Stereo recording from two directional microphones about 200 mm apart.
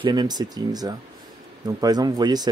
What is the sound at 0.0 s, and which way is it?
Speech, 20° right (ahead or behind).